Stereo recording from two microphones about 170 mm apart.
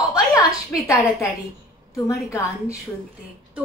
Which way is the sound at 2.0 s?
15° left (ahead or behind).